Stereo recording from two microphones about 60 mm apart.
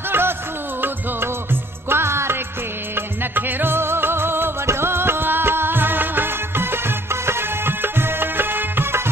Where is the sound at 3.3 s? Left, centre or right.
Right.